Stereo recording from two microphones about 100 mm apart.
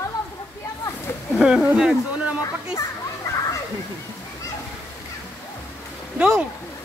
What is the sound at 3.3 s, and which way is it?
Children playing, 30° left (ahead or behind).